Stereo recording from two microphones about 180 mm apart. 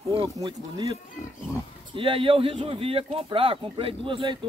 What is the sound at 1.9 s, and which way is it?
Speech, 30° right (ahead or behind).